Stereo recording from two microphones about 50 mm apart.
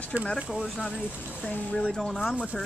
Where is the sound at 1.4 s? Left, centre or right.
Left.